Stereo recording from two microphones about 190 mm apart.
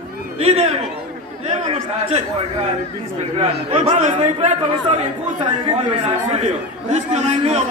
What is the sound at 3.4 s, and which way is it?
A man's voice, 35° right (ahead or behind).